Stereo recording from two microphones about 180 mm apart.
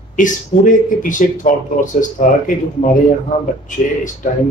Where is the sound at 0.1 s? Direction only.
45° left (ahead or behind).